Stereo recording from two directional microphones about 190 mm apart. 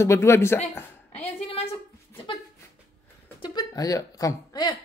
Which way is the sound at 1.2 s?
30° left (ahead or behind).